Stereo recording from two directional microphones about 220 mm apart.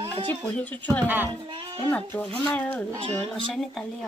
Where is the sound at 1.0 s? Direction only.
10° right (ahead or behind).